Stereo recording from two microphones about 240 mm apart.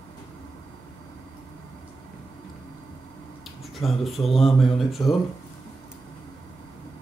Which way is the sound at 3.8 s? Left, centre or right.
Centre.